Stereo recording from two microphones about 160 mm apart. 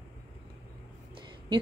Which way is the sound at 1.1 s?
30° right (ahead or behind).